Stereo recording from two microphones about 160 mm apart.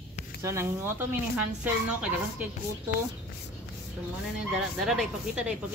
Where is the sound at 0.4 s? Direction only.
15° right (ahead or behind).